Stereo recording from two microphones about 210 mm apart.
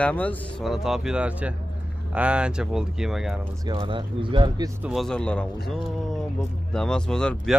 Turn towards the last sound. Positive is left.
turn(degrees=5)  # may be behind; listen again after turning